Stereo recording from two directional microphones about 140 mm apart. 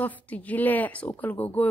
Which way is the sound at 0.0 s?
10° left (ahead or behind).